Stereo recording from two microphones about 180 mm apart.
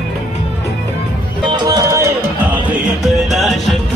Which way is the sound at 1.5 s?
20° right (ahead or behind).